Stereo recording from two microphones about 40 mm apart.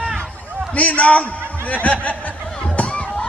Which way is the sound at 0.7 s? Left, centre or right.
Left.